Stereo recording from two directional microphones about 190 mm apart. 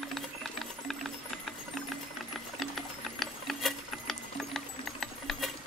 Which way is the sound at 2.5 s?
Centre (ahead or behind).